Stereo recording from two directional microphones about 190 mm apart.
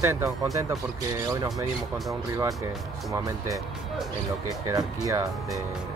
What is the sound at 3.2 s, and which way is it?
Speech, 15° right (ahead or behind).